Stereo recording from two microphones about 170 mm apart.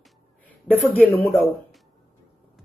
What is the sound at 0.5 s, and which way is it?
A woman's voice, 10° left (ahead or behind).